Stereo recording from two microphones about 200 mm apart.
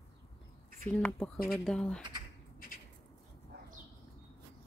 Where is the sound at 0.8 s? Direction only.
10° left (ahead or behind).